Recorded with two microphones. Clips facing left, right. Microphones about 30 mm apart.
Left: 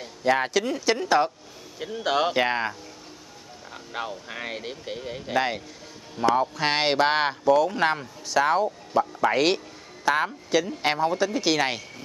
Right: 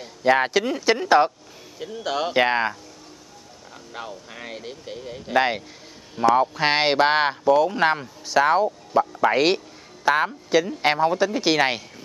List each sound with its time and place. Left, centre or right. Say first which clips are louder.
0.2 s speech: right 4 dB; centre
1.8 s speech: left 2 dB; centre
2.3 s speech: right 4 dB; centre
3.9 s speech: left 3 dB; centre
5.3 s speech: right 5 dB; centre